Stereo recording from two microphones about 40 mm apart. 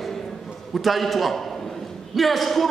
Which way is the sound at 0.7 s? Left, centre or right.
Centre.